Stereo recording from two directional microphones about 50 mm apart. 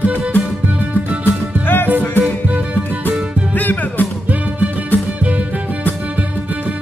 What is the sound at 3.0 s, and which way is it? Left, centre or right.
Music, left.